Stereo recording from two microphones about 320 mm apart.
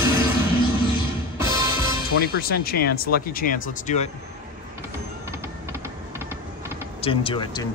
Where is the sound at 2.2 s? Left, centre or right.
Left.